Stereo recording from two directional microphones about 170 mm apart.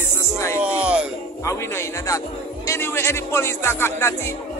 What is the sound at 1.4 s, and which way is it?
Speech, 15° left (ahead or behind).